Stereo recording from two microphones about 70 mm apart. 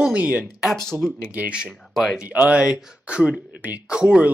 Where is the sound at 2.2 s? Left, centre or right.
Centre.